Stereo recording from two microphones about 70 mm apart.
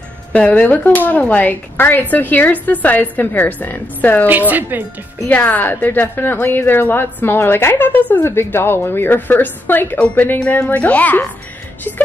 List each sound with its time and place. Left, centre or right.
0.3 s a woman's voice: left
4.3 s a woman's voice: right
5.3 s a woman's voice: left